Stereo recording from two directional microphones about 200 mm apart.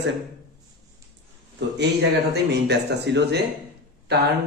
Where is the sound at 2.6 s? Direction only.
55° right (ahead or behind).